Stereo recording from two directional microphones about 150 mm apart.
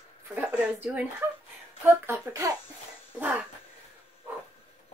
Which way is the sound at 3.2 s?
10° right (ahead or behind).